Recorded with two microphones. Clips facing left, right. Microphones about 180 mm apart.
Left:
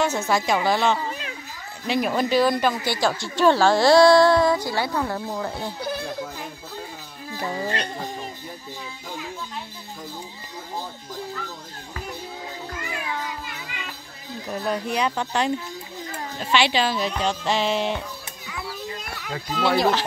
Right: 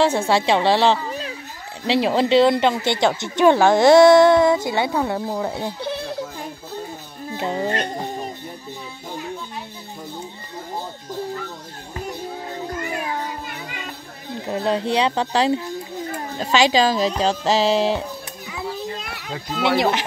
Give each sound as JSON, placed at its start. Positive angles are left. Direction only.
{"t": 0.0, "sound": "a woman's voice", "side_deg": -30}
{"t": 7.2, "sound": "music", "side_deg": -25}
{"t": 7.7, "sound": "a sound", "side_deg": -50}
{"t": 12.6, "sound": "music", "side_deg": -45}
{"t": 14.4, "sound": "a woman's voice", "side_deg": -25}
{"t": 18.5, "sound": "children playing", "side_deg": -25}